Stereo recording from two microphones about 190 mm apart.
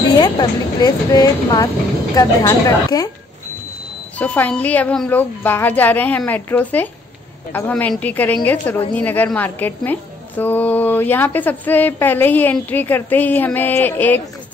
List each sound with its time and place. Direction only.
0.2 s speech: 20° left (ahead or behind)
4.2 s a woman's voice: 5° left (ahead or behind)